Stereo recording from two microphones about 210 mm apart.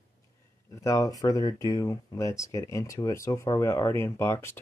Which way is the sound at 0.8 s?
15° left (ahead or behind).